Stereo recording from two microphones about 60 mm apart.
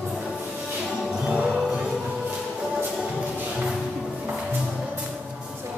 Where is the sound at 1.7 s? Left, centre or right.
Centre.